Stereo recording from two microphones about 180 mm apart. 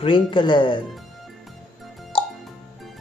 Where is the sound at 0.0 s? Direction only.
30° left (ahead or behind).